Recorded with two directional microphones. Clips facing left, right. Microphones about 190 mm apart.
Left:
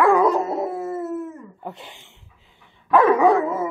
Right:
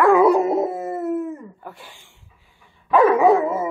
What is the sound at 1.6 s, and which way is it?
Speech, 20° left (ahead or behind).